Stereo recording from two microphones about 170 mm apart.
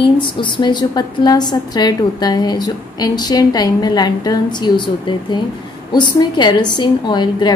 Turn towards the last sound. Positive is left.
turn(degrees=25)  # may be behind; listen again after turning